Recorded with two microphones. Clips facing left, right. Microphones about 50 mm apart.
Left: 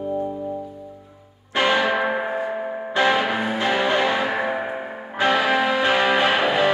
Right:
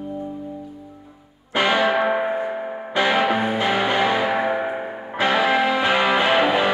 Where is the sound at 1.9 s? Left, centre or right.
Centre.